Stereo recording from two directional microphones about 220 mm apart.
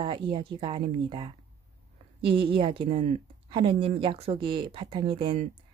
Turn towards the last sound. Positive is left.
turn(degrees=-25)  # may be behind; listen again after turning